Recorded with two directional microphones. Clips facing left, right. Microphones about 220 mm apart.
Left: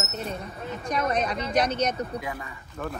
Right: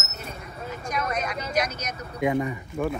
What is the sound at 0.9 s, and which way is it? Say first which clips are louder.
Speech: left 3 dB; 35° left (ahead or behind).